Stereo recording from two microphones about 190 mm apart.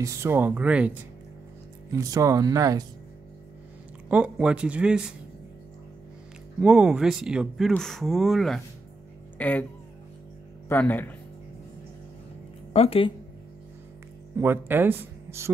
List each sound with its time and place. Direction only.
0.0 s speech: 15° right (ahead or behind)
1.9 s speech: 20° right (ahead or behind)
4.1 s speech: 5° right (ahead or behind)
6.6 s speech: 5° right (ahead or behind)
10.7 s speech: 10° left (ahead or behind)
12.7 s speech: 30° left (ahead or behind)
14.3 s speech: 10° right (ahead or behind)